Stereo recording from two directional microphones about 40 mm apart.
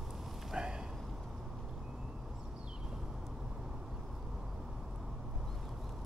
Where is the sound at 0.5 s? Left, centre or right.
Right.